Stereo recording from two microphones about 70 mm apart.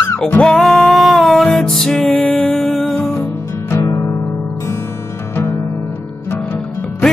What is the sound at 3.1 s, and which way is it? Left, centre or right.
Music, left.